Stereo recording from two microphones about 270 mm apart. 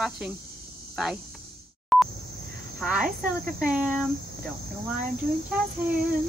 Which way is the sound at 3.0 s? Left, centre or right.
Right.